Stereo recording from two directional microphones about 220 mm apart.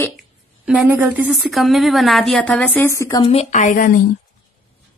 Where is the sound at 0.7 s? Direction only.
5° right (ahead or behind); by 3.3 s 15° left (ahead or behind).